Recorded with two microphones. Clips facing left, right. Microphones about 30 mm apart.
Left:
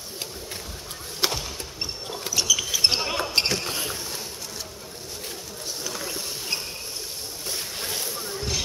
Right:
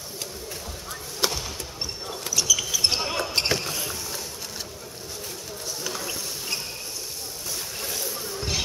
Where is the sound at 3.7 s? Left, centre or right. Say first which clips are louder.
Left 1 dB; centre.